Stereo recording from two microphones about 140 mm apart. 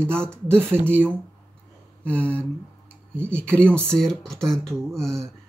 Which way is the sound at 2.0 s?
10° left (ahead or behind).